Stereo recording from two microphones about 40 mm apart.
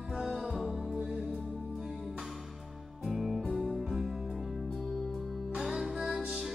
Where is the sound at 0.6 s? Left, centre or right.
Centre.